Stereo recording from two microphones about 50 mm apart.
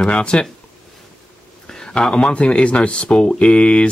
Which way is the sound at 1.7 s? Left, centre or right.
Centre.